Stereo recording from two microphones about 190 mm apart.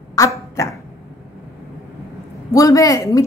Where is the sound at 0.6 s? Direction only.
15° left (ahead or behind).